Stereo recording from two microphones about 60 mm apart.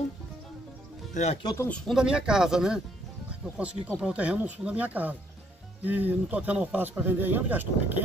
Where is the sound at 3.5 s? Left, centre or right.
Right.